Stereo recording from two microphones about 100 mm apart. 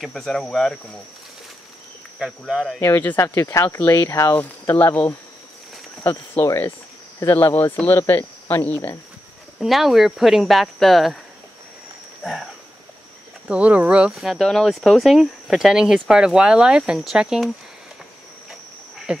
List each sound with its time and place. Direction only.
0.0 s speech: 5° left (ahead or behind)
2.1 s speech: 5° right (ahead or behind)
2.8 s speech: 20° left (ahead or behind)
9.6 s speech: centre (ahead or behind)
12.2 s a sound: centre (ahead or behind)
13.5 s speech: 15° right (ahead or behind)
18.5 s cricket: 5° right (ahead or behind)